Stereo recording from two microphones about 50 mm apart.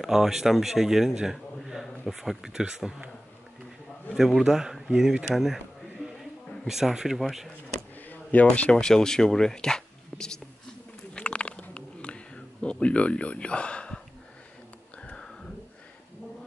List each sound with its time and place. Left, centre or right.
0.0 s a man's voice: centre
4.1 s speech: centre
5.3 s a sound: centre
6.7 s speech: centre
8.1 s speech: left
8.7 s speech: centre
11.1 s bird: left
11.7 s a sound: left
12.8 s speech: left